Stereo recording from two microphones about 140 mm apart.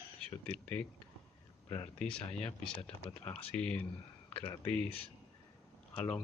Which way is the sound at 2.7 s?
40° left (ahead or behind).